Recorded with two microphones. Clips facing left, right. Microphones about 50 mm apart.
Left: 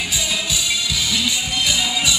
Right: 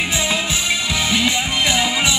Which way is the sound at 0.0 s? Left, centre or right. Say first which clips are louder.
Right 4 dB; right.